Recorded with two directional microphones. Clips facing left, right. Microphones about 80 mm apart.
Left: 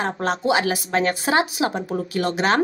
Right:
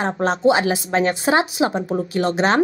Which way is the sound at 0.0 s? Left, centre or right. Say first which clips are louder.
Right 5 dB; right.